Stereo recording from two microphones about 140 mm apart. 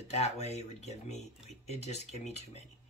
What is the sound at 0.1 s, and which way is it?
Speech, 50° left (ahead or behind).